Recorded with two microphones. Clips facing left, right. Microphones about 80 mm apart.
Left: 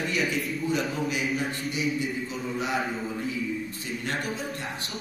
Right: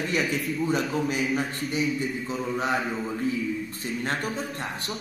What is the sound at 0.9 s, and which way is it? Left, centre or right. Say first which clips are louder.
Speech: right 3 dB; right.